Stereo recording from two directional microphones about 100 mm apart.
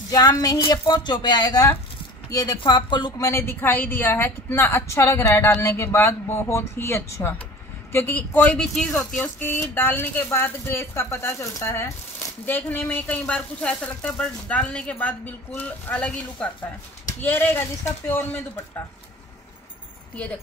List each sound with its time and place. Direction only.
0.1 s speech: 40° left (ahead or behind)
2.6 s speech: 50° left (ahead or behind)
3.2 s a woman's voice: 25° left (ahead or behind); by 8.9 s 10° left (ahead or behind)
9.4 s a woman's voice: 20° left (ahead or behind)